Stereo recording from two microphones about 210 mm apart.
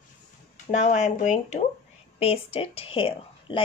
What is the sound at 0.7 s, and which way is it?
A woman's voice, 35° left (ahead or behind).